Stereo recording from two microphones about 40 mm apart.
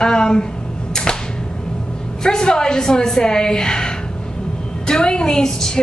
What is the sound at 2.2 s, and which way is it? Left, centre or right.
A woman's voice, centre.